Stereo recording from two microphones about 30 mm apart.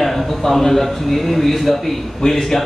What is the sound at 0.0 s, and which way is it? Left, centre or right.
A man's voice, centre.